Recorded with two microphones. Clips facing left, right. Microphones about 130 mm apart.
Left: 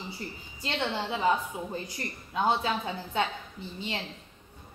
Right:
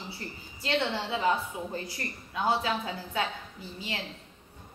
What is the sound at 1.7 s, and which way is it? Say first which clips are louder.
A woman's voice: even; 20° left (ahead or behind).